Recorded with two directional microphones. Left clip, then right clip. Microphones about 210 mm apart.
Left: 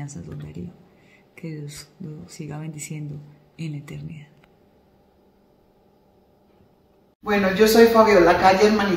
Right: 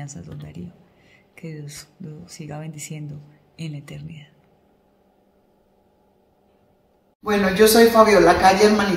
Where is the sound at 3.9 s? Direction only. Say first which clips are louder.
Even; 75° right (ahead or behind).